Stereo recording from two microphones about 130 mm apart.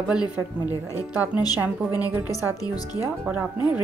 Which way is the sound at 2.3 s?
30° left (ahead or behind).